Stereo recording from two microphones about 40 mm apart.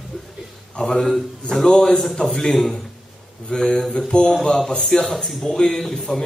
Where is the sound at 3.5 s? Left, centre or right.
Centre.